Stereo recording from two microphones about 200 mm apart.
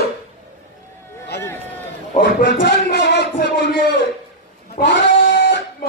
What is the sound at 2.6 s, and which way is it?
Music, 55° left (ahead or behind).